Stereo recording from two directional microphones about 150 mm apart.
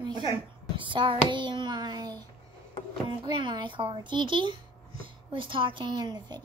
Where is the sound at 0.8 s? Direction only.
35° right (ahead or behind).